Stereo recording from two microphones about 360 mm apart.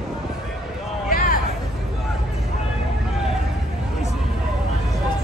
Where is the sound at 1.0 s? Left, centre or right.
Left.